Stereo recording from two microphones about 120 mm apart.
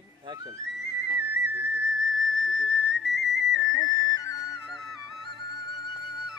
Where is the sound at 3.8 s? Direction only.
30° left (ahead or behind).